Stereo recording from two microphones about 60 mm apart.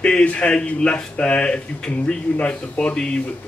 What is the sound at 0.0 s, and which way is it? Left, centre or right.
Speech, centre.